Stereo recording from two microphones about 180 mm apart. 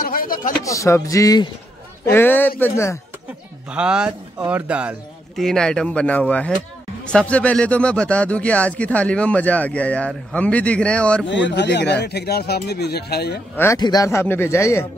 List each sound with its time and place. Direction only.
0.0 s a sound: 55° left (ahead or behind)
0.7 s speech: 15° left (ahead or behind)
3.7 s a man's voice: 5° right (ahead or behind)
11.2 s speech: 80° left; by 13.4 s 65° left (ahead or behind)
13.6 s speech: 20° left (ahead or behind)